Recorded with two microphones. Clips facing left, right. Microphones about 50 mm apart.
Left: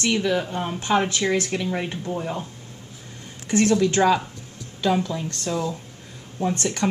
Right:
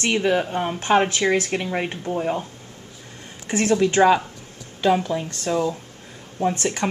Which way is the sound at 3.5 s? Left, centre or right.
Right.